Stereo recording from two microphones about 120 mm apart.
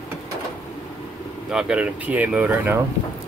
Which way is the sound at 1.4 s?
5° right (ahead or behind).